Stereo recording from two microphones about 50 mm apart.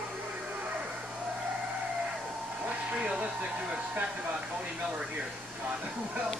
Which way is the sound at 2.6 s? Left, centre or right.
Right.